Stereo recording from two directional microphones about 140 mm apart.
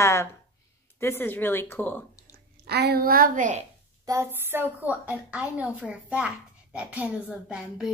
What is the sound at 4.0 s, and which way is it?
A woman's voice, 20° right (ahead or behind).